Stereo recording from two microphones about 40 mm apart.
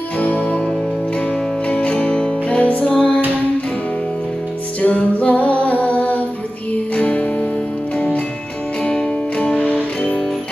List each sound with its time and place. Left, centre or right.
0.2 s music: left
4.8 s music: left
7.0 s music: left
8.8 s music: centre
9.4 s music: left